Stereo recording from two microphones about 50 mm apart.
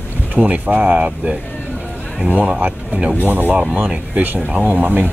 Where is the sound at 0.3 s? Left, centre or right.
Right.